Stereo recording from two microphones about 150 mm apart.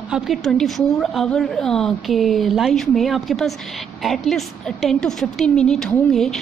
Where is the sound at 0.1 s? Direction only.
Centre (ahead or behind).